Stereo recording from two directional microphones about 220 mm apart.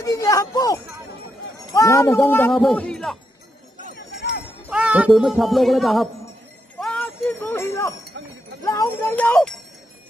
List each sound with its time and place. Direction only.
0.0 s speech: 15° left (ahead or behind)
3.9 s jingle bell: 50° left (ahead or behind)
4.6 s speech: 5° right (ahead or behind)
6.8 s a sound: 5° left (ahead or behind)
8.6 s speech: 10° left (ahead or behind)